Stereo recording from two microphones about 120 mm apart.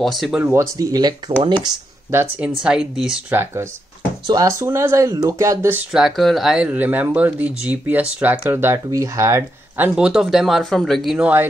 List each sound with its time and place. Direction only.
0.0 s speech: centre (ahead or behind)
0.4 s speech: 20° right (ahead or behind)
0.7 s speech: 30° right (ahead or behind)
2.6 s speech: 5° right (ahead or behind)
3.3 s speech: 20° right (ahead or behind)
5.9 s speech: centre (ahead or behind); by 9.8 s 25° right (ahead or behind)
9.9 s speech: 5° right (ahead or behind)
11.1 s speech: 10° right (ahead or behind)